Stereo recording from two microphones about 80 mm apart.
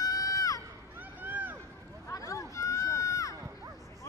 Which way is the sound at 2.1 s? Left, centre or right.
Left.